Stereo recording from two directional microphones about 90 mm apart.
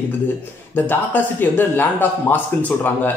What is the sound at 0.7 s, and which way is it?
A man's voice, 20° left (ahead or behind).